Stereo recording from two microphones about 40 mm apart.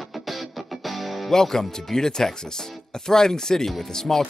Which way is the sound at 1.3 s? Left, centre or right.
Centre.